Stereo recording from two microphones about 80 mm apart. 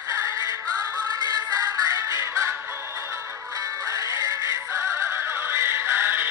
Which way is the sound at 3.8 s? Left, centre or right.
Right.